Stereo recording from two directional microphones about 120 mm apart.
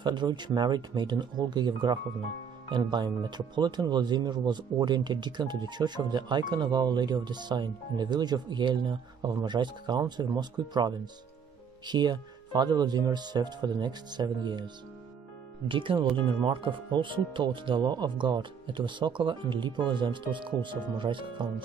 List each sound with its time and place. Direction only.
0.0 s speech: 40° right (ahead or behind)
15.7 s speech: 45° right (ahead or behind)